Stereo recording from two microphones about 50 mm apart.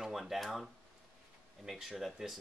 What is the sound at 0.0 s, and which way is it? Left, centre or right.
Speech, centre.